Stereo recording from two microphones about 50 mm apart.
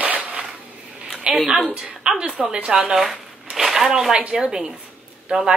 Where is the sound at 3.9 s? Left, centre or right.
Centre.